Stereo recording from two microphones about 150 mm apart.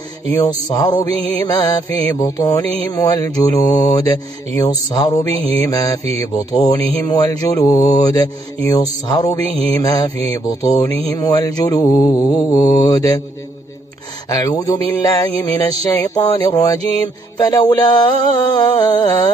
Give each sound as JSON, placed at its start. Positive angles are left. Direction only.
{"t": 0.3, "sound": "speech", "side_deg": 25}
{"t": 14.6, "sound": "speech", "side_deg": 25}